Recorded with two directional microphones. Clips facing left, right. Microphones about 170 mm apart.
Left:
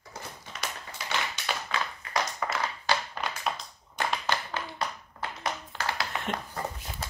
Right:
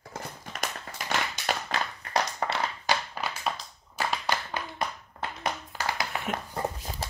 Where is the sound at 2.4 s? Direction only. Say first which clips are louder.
Right 2 dB; 35° right (ahead or behind).